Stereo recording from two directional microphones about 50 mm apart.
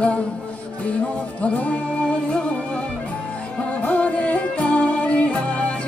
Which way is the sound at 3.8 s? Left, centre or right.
Left.